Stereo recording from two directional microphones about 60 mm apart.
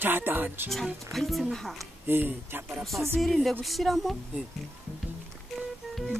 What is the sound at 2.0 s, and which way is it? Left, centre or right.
Speech, right.